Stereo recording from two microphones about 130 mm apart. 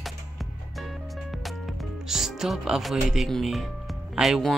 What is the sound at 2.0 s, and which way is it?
Speech, 5° right (ahead or behind).